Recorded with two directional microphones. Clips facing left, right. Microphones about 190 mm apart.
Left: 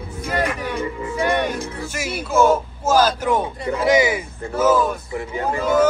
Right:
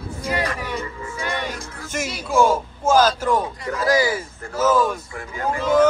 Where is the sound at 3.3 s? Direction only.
25° left (ahead or behind).